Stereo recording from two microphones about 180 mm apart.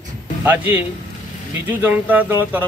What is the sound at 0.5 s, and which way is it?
Speech, 10° right (ahead or behind).